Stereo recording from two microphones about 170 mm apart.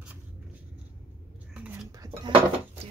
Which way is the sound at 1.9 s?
20° right (ahead or behind).